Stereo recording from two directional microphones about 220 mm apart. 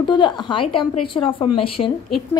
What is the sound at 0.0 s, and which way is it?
Speech, 20° left (ahead or behind).